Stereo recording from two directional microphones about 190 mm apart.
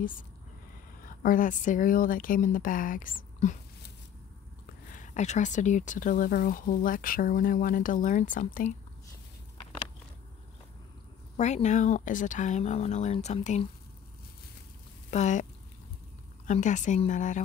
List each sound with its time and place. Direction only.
1.0 s speech: 45° left (ahead or behind)
4.9 s speech: 40° left (ahead or behind)
11.3 s speech: 35° left (ahead or behind)
15.0 s speech: 40° left (ahead or behind)
16.4 s speech: 40° left (ahead or behind)